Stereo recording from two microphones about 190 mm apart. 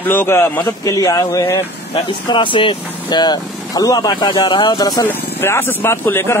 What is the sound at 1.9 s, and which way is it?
Speech, 25° left (ahead or behind).